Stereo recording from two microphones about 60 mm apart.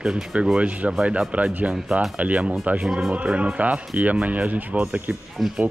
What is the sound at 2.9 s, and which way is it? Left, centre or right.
Speech, centre.